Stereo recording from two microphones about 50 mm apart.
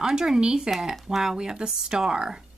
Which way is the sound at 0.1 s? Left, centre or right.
Centre.